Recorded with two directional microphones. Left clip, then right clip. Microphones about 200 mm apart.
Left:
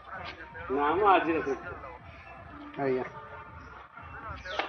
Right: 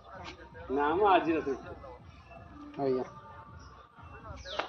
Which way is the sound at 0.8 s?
55° right (ahead or behind).